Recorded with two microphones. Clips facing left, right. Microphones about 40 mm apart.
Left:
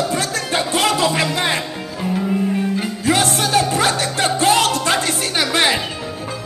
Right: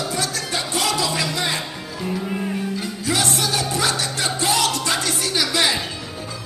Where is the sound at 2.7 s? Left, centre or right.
Left.